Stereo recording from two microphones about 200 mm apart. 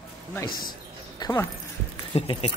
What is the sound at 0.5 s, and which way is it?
Speech, 45° left (ahead or behind).